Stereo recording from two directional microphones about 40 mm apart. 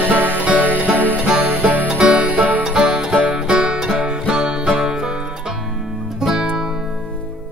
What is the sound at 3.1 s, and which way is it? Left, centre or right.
Music, right.